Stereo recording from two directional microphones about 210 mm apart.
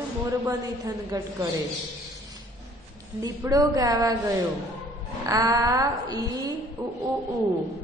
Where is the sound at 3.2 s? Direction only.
15° right (ahead or behind).